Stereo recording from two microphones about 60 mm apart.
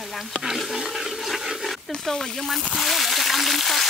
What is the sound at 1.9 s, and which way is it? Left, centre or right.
Speech, centre.